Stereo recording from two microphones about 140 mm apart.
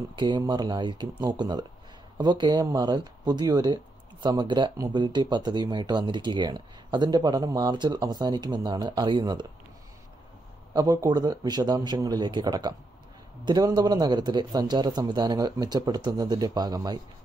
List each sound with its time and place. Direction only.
0.2 s speech: 30° right (ahead or behind)
10.7 s a man's voice: 25° right (ahead or behind)